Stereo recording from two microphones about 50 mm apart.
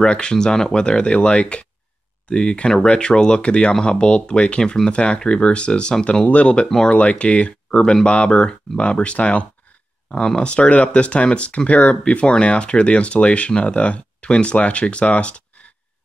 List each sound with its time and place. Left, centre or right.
0.0 s speech: centre